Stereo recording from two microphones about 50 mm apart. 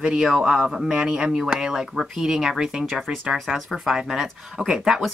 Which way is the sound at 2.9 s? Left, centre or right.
Centre.